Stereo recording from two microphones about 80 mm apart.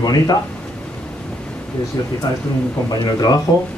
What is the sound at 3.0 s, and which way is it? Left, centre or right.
Speech, left.